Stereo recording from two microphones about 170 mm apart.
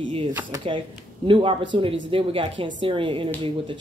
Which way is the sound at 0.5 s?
20° right (ahead or behind).